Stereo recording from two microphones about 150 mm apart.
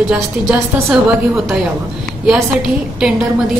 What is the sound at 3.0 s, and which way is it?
Speech, 5° right (ahead or behind).